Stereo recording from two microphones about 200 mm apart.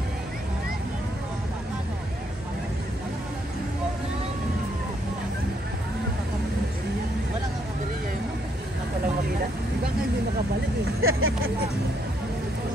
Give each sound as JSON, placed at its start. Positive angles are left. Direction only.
{"t": 11.0, "sound": "vehicle", "side_deg": -90}